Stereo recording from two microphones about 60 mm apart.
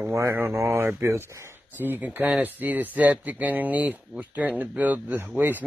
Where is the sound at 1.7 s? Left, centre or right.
Right.